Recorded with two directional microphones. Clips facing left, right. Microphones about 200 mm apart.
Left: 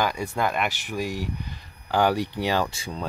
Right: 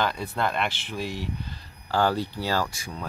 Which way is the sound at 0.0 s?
10° left (ahead or behind).